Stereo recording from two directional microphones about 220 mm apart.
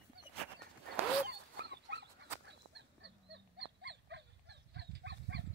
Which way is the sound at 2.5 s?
50° right (ahead or behind).